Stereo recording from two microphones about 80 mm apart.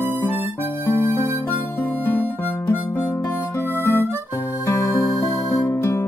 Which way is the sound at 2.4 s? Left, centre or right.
Left.